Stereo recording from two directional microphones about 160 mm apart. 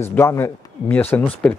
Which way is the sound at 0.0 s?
15° left (ahead or behind).